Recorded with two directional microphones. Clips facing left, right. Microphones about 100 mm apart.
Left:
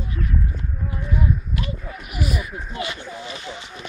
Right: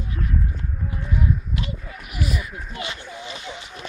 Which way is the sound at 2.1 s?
10° left (ahead or behind).